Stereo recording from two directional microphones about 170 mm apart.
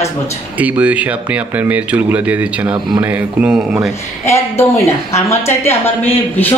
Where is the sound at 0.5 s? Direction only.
10° right (ahead or behind).